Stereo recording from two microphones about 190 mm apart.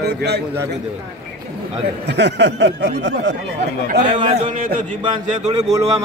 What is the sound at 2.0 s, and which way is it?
Speech, 65° right (ahead or behind).